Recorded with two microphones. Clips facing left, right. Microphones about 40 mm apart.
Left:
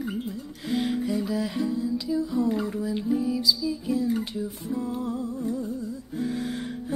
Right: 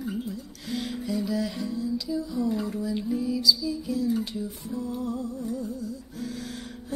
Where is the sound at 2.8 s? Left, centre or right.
Centre.